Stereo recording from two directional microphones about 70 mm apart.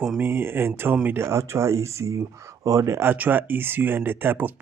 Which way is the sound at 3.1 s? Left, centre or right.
Right.